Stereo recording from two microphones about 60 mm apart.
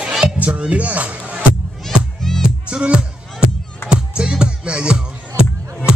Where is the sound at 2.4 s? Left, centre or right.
Centre.